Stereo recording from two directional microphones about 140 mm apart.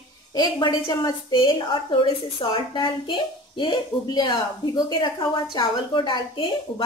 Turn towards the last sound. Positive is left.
turn(degrees=40)  # may be behind; listen again after turning